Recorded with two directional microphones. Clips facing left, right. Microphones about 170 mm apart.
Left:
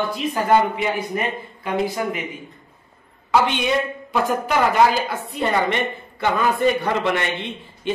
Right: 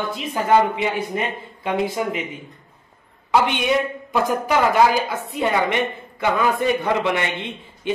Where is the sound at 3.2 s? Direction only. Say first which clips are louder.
Even; 15° right (ahead or behind).